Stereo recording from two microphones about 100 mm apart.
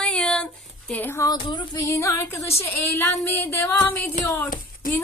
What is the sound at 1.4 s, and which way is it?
Speech, 50° left (ahead or behind).